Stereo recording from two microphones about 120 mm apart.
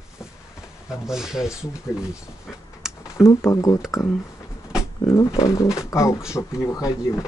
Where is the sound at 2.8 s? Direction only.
5° right (ahead or behind).